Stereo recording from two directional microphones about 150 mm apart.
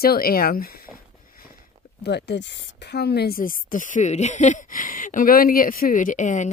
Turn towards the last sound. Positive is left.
turn(degrees=55)  # may be behind; listen again after turning